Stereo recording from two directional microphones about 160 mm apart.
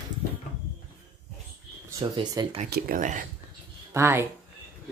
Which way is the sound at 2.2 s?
25° right (ahead or behind).